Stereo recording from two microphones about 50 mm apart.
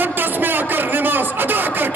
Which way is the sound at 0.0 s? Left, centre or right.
Right.